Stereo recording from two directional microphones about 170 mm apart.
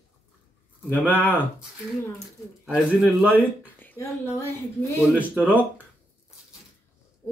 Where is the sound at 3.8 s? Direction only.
10° left (ahead or behind).